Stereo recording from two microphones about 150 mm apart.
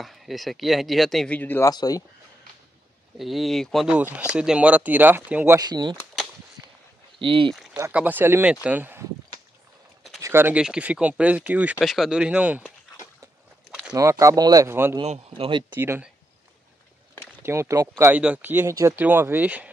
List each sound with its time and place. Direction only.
0.0 s speech: centre (ahead or behind)
1.7 s speech: 25° left (ahead or behind)
3.2 s speech: centre (ahead or behind)
5.6 s speech: 30° right (ahead or behind)
7.2 s speech: 35° right (ahead or behind)
7.5 s a sound: centre (ahead or behind)
7.9 s speech: 10° right (ahead or behind)
10.2 s speech: 15° right (ahead or behind)
13.9 s speech: 20° right (ahead or behind)
15.0 s speech: 40° right (ahead or behind)
15.7 s speech: 15° right (ahead or behind)
17.4 s speech: 15° right (ahead or behind)